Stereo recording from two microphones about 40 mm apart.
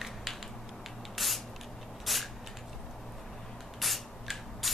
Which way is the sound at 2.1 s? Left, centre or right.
Centre.